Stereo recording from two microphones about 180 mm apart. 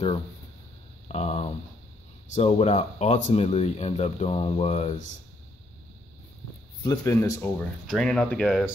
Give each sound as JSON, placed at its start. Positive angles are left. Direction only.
{"t": 1.1, "sound": "speech", "side_deg": 35}
{"t": 6.8, "sound": "speech", "side_deg": 20}